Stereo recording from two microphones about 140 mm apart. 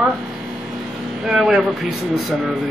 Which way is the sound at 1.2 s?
Centre (ahead or behind).